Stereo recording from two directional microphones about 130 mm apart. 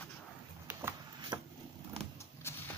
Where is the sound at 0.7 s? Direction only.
20° right (ahead or behind).